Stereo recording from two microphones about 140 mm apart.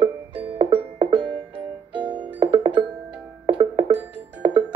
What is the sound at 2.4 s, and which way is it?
Music, 35° right (ahead or behind).